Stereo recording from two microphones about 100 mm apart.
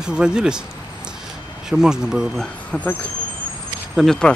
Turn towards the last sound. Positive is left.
turn(degrees=5)  # may be behind; listen again after turning